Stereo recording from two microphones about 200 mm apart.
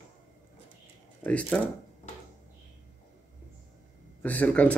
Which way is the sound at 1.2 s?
5° left (ahead or behind).